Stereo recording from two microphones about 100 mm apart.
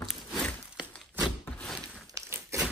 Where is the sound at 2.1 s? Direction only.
30° right (ahead or behind).